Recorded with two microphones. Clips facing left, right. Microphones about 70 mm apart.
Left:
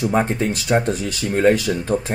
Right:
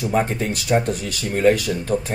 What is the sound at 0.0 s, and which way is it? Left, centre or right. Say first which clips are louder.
Speech: left 2 dB; left.